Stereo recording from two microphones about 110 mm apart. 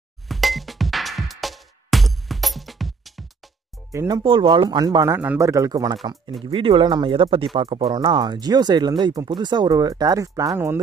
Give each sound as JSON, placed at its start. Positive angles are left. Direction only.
{"t": 0.3, "sound": "music", "side_deg": 0}
{"t": 4.1, "sound": "speech", "side_deg": -50}
{"t": 4.6, "sound": "speech", "side_deg": -35}
{"t": 5.1, "sound": "speech", "side_deg": -15}
{"t": 5.4, "sound": "speech", "side_deg": -30}
{"t": 6.4, "sound": "speech", "side_deg": -50}